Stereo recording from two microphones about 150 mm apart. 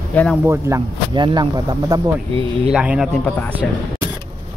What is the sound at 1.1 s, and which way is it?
Speech, 30° right (ahead or behind).